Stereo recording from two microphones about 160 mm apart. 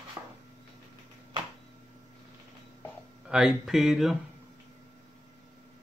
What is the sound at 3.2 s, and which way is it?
Speech, 5° right (ahead or behind).